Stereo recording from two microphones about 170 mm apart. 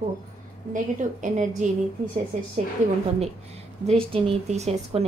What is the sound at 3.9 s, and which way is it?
Speech, 35° right (ahead or behind).